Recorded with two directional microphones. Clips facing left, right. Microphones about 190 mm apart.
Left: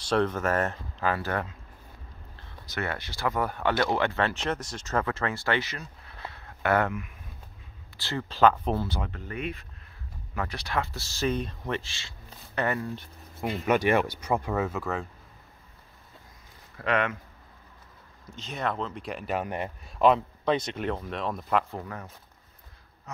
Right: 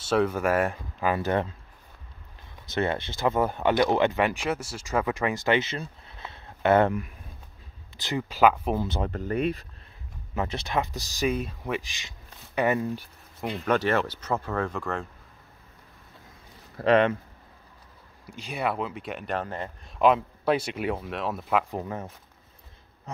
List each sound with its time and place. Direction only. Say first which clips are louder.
0.1 s speech: right 2 dB; 10° right (ahead or behind)
2.7 s speech: right 6 dB; 25° right (ahead or behind)
6.3 s a sound: right 5 dB; 25° right (ahead or behind)
8.0 s speech: right 1 dB; 15° right (ahead or behind)
9.0 s speech: right 8 dB; 40° right (ahead or behind)
10.3 s speech: right 3 dB; 25° right (ahead or behind)
13.4 s speech: even; 5° left (ahead or behind)
16.7 s speech: right 7 dB; 30° right (ahead or behind)
18.2 s speech: right 2 dB; 10° right (ahead or behind); by 19.7 s 15° left (ahead or behind)
20.0 s speech: even; 5° right (ahead or behind)
21.7 s speech: right 5 dB; 25° right (ahead or behind)